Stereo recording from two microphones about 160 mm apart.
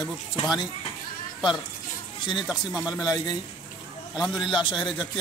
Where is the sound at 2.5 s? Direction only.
5° right (ahead or behind).